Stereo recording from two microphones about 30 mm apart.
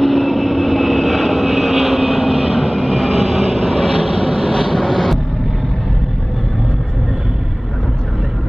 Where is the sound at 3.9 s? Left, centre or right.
Centre.